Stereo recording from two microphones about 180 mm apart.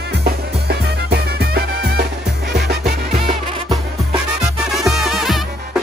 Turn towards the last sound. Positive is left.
turn(degrees=0)  # may be behind; listen again after turning